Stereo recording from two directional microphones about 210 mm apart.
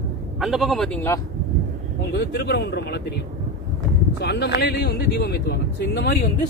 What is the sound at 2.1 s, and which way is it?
Speech, 50° left (ahead or behind).